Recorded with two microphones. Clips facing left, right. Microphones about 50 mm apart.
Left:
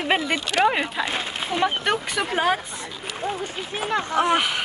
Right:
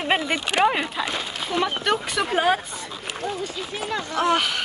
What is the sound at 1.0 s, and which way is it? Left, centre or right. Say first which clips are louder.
Speech: left 1 dB; left.